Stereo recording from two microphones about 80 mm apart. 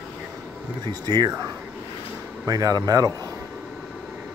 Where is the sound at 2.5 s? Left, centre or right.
Right.